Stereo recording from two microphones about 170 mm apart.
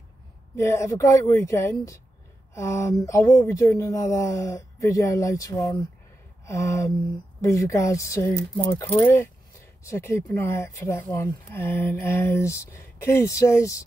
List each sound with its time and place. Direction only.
0.6 s speech: 15° left (ahead or behind)
6.4 s a sound: 15° left (ahead or behind)
7.4 s speech: 20° left (ahead or behind)